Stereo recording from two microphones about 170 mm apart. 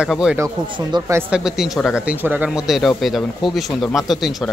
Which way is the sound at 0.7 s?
20° right (ahead or behind).